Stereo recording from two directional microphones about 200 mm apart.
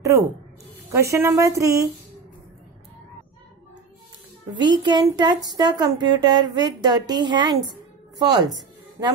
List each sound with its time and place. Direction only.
0.0 s a woman's voice: 15° right (ahead or behind)
4.6 s speech: 20° right (ahead or behind)